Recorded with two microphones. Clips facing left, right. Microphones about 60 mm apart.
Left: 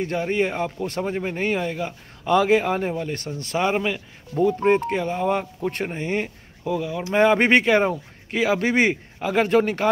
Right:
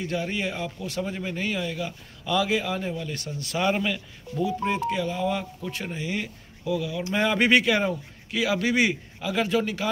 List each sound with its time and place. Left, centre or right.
0.0 s speech: left
3.5 s speech: left
4.4 s speech: left